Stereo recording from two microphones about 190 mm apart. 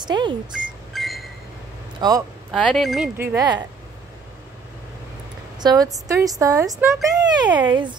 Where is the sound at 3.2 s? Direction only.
10° right (ahead or behind).